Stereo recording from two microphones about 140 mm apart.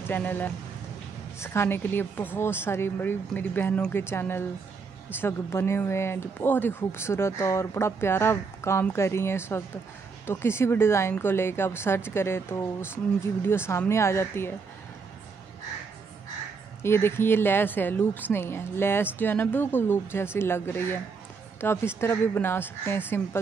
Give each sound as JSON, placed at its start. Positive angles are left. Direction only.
{"t": 0.1, "sound": "speech", "side_deg": 15}
{"t": 16.8, "sound": "speech", "side_deg": 15}